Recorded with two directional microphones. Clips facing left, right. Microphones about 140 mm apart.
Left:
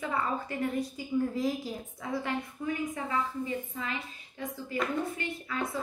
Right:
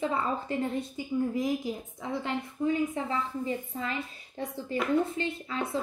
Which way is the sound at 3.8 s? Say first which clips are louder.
Right 3 dB; 35° right (ahead or behind).